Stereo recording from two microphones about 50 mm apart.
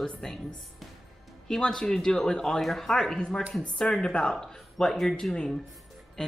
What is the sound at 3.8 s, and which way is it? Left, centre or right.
Speech, left.